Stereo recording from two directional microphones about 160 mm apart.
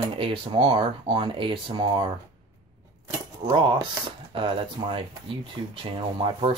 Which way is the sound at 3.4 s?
30° right (ahead or behind).